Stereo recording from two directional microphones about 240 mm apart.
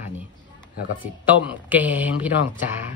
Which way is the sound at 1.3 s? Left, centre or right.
Centre.